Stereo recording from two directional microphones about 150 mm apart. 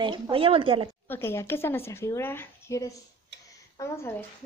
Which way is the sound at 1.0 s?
15° left (ahead or behind).